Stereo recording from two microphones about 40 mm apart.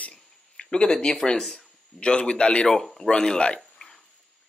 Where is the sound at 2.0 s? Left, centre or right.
Left.